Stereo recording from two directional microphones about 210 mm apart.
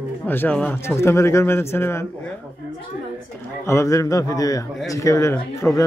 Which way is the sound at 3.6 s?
15° left (ahead or behind).